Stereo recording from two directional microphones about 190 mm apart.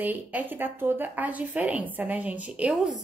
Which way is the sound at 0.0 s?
10° right (ahead or behind).